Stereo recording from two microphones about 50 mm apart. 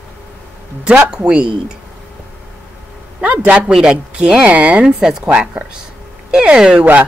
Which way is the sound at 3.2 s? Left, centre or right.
Right.